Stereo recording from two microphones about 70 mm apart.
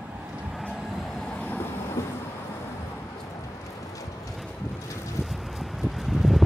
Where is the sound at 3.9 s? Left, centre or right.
Left.